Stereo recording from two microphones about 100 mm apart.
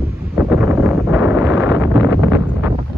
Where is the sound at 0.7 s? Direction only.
Centre (ahead or behind).